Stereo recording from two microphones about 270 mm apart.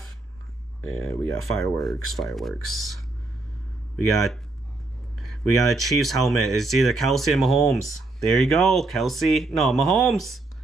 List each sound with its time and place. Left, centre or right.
0.8 s speech: right
1.4 s speech: centre
5.2 s speech: centre